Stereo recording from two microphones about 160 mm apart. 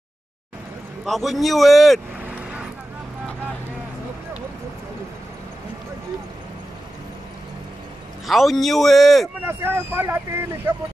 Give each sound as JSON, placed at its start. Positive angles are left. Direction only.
{"t": 1.0, "sound": "speech", "side_deg": 0}
{"t": 8.3, "sound": "speech", "side_deg": 0}
{"t": 9.5, "sound": "speech", "side_deg": -15}